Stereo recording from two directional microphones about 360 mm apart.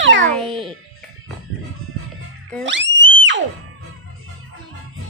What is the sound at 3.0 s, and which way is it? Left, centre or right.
Music, right.